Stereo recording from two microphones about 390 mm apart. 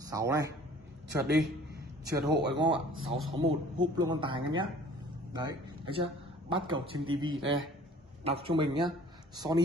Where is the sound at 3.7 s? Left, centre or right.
Centre.